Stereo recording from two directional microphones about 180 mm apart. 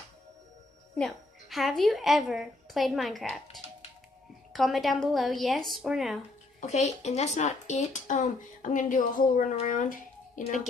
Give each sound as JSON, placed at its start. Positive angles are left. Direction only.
{"t": 0.9, "sound": "a woman's voice", "side_deg": 0}
{"t": 6.6, "sound": "speech", "side_deg": 40}